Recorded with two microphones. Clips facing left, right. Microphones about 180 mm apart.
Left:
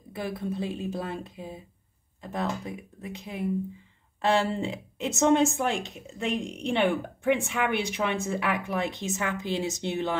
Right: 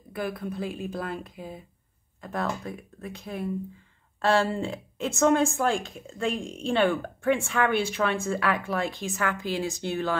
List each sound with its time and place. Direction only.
0.1 s a woman's voice: 25° left (ahead or behind)